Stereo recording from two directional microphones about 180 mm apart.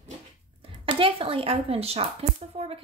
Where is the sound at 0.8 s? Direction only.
30° right (ahead or behind).